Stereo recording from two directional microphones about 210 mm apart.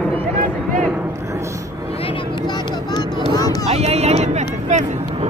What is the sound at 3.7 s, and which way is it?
Speech, 30° right (ahead or behind).